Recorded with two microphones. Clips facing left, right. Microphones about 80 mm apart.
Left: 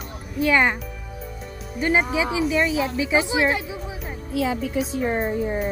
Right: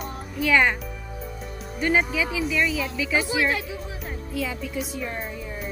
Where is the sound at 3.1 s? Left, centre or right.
Left.